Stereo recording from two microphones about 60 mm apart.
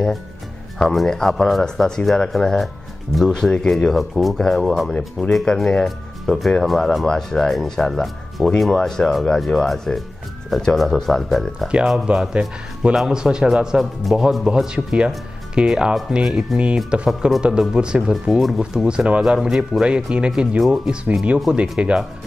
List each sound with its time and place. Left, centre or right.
0.9 s speech: centre
12.1 s speech: centre
18.1 s speech: centre
18.9 s speech: centre
21.5 s speech: centre